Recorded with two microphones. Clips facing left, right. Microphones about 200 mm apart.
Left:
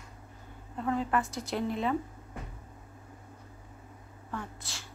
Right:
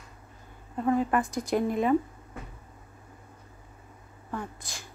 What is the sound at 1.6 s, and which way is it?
Speech, 50° right (ahead or behind).